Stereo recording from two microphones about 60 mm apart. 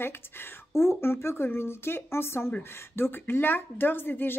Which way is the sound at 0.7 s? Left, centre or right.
Left.